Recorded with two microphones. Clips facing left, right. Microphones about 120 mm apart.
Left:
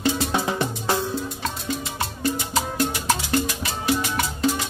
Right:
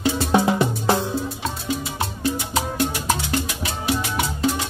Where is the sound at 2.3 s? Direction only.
Centre (ahead or behind).